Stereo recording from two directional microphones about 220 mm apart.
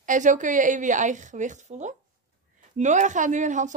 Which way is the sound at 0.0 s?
35° right (ahead or behind).